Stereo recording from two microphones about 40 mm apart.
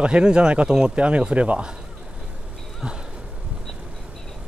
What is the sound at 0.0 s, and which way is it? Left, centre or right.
Speech, right.